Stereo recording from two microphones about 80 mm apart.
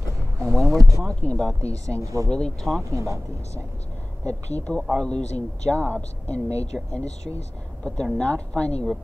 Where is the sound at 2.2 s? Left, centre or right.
Centre.